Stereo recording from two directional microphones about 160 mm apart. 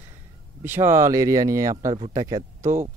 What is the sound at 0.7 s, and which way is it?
Speech, 15° right (ahead or behind).